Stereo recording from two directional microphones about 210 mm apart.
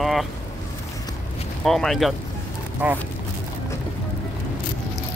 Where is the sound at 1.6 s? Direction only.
Centre (ahead or behind).